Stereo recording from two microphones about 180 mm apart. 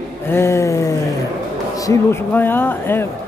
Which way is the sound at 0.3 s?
15° left (ahead or behind).